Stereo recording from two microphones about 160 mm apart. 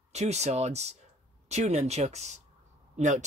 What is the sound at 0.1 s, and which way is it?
Speech, 45° right (ahead or behind).